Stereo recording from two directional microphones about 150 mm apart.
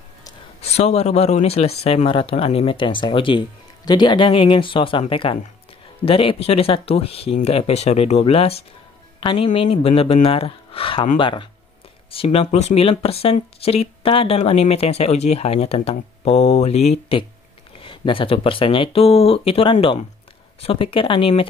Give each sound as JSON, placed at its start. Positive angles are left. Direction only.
{"t": 0.6, "sound": "speech", "side_deg": 45}